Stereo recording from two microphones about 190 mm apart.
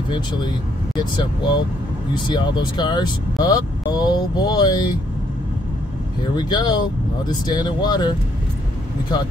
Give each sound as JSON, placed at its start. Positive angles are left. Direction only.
{"t": 0.9, "sound": "speech", "side_deg": 20}
{"t": 6.3, "sound": "speech", "side_deg": 20}